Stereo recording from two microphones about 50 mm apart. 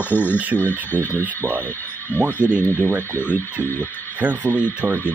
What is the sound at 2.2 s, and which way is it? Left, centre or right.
Speech, left.